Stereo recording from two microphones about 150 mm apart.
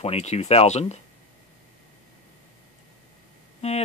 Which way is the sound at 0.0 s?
45° left (ahead or behind).